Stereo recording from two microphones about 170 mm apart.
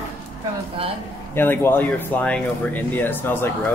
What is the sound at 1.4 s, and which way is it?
Speech, 10° left (ahead or behind).